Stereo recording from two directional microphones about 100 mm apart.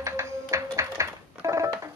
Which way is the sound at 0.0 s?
30° right (ahead or behind).